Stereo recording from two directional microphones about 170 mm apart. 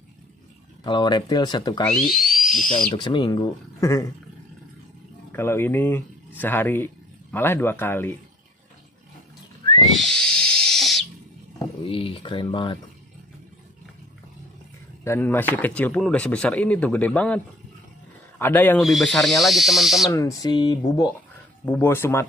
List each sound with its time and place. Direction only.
0.8 s speech: 25° left (ahead or behind)
1.9 s speech: centre (ahead or behind)
2.9 s speech: 25° left (ahead or behind)
5.3 s speech: 15° left (ahead or behind)
9.8 s pig: centre (ahead or behind)
11.8 s speech: 30° left (ahead or behind)
15.0 s speech: 10° left (ahead or behind)
18.4 s speech: 10° left (ahead or behind)
18.8 s speech: centre (ahead or behind)
20.1 s speech: 20° left (ahead or behind)